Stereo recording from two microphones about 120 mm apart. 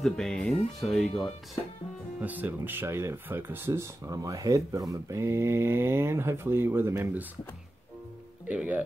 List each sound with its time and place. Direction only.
0.0 s speech: 5° left (ahead or behind)
2.1 s speech: 15° right (ahead or behind)
8.5 s speech: 10° right (ahead or behind)